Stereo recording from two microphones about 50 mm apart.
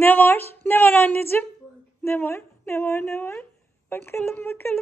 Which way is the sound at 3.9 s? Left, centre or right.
Left.